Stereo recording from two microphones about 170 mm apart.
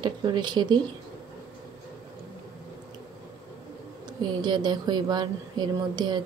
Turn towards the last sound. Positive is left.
turn(degrees=-25)  # may be behind; listen again after turning